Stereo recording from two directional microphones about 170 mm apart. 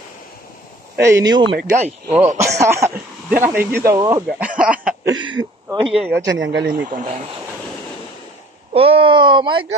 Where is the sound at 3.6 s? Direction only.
70° right (ahead or behind).